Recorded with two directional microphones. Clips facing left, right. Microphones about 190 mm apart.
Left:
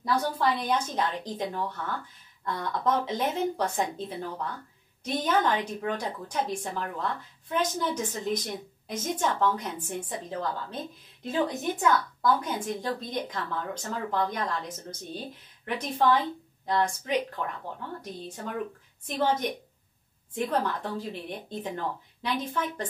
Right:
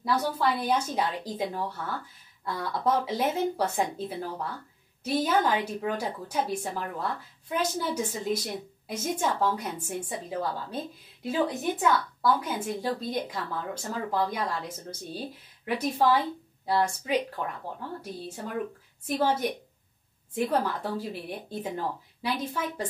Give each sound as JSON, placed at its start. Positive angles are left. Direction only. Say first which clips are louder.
{"t": 0.0, "sound": "a woman's voice", "louder": "even", "side_deg": -5}
{"t": 19.0, "sound": "a woman's voice", "louder": "right 1 dB", "side_deg": -10}